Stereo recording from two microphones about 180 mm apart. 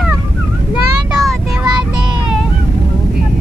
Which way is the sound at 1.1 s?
5° right (ahead or behind).